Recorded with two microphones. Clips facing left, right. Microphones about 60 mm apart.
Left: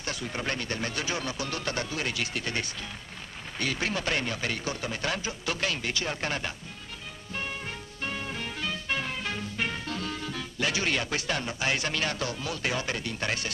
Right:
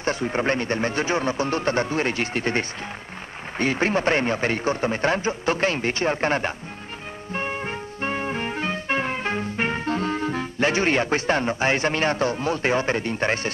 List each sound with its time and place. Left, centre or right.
0.0 s a man's voice: right
7.3 s music: right